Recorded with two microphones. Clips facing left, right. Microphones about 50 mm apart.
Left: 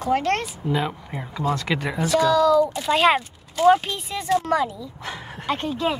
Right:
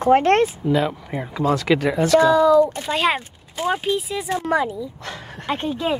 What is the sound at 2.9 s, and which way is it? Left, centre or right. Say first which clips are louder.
Speech: left 6 dB; centre.